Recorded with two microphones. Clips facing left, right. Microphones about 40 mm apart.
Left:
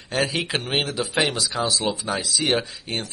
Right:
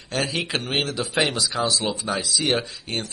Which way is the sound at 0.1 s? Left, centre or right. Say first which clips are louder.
Left 1 dB; centre.